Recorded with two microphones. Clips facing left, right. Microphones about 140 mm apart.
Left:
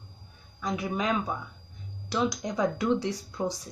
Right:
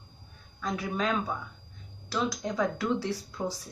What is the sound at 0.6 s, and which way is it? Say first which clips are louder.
Speech: left 1 dB; 10° left (ahead or behind).